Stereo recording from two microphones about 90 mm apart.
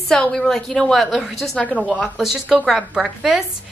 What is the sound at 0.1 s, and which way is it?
A woman's voice, 10° left (ahead or behind).